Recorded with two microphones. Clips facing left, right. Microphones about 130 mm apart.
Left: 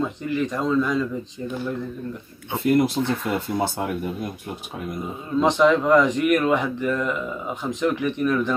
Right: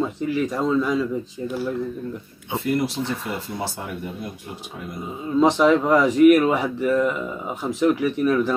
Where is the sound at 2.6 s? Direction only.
55° left (ahead or behind).